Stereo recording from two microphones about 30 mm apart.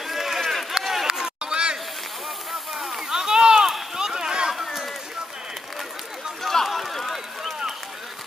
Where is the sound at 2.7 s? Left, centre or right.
Centre.